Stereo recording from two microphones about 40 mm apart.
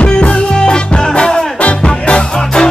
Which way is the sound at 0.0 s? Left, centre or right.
Left.